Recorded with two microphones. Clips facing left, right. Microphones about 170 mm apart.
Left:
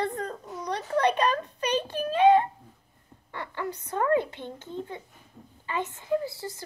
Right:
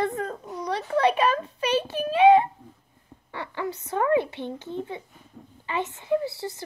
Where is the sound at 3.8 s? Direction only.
15° right (ahead or behind).